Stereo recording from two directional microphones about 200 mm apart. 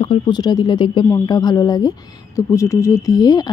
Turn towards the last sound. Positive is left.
turn(degrees=20)  # may be behind; listen again after turning